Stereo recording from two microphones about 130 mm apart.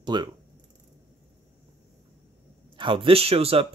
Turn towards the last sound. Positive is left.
turn(degrees=-50)  # may be behind; listen again after turning